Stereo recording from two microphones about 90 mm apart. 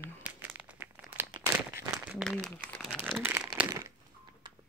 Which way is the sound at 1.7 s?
35° right (ahead or behind).